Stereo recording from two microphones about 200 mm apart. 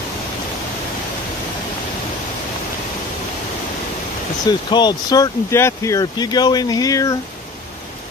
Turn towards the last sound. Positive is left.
turn(degrees=15)  # may be behind; listen again after turning